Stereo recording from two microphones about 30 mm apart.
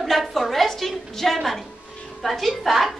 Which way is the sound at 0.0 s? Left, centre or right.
Centre.